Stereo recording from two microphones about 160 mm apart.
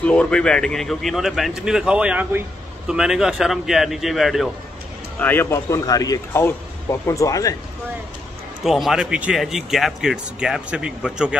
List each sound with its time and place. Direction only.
0.0 s speech: 5° left (ahead or behind)
5.2 s speech: 15° left (ahead or behind)
8.6 s speech: centre (ahead or behind)